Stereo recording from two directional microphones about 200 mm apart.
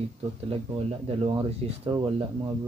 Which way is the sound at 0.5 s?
30° right (ahead or behind).